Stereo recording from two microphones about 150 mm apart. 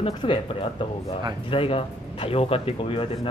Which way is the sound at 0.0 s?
35° left (ahead or behind).